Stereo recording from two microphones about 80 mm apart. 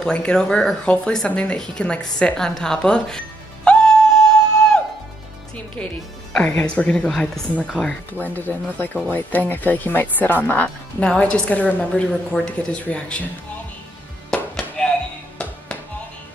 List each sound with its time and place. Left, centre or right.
0.0 s speech: centre
3.6 s music: centre
5.8 s speech: centre
7.1 s speech: centre
8.1 s speech: left
14.3 s music: centre